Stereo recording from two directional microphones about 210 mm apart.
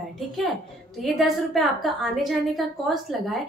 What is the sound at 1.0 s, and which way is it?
A woman's voice, centre (ahead or behind).